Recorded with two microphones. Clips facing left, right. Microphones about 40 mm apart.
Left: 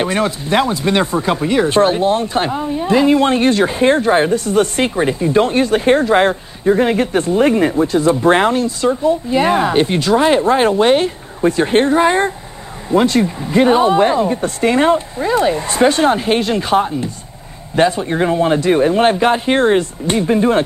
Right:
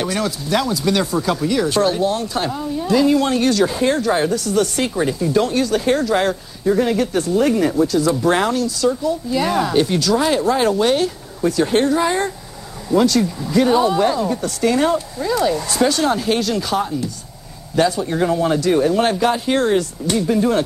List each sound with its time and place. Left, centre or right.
0.0 s speech: left